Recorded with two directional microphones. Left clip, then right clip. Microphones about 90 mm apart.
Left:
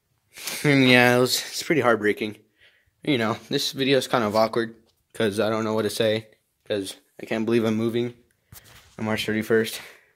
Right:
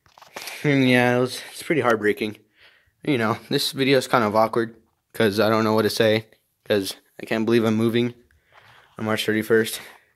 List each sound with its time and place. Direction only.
0.5 s speech: centre (ahead or behind)
1.2 s speech: 10° left (ahead or behind)
2.1 s speech: 30° right (ahead or behind)
3.0 s speech: 10° right (ahead or behind)
3.3 s speech: 30° right (ahead or behind)
3.9 s speech: 20° right (ahead or behind); by 6.2 s 35° right (ahead or behind)
6.7 s speech: 90° right
7.2 s speech: 25° right (ahead or behind)
7.8 s speech: 50° right (ahead or behind)
9.1 s speech: 25° right (ahead or behind)